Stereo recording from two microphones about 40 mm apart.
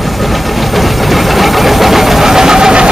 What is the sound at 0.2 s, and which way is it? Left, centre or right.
Engine, centre.